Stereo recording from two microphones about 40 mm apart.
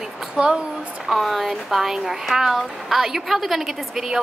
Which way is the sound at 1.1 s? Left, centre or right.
Centre.